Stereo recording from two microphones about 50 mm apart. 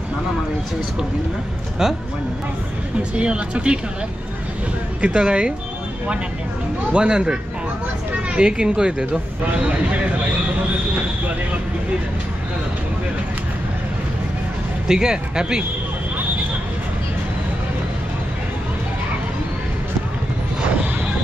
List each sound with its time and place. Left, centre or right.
3.0 s speech: right
5.0 s speech: right
6.9 s speech: centre
14.9 s speech: centre